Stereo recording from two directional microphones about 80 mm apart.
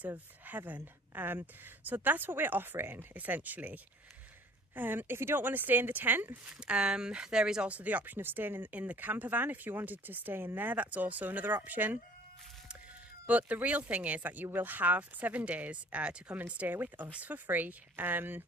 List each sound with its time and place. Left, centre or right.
0.5 s a woman's voice: right
6.6 s speech: centre
13.3 s speech: centre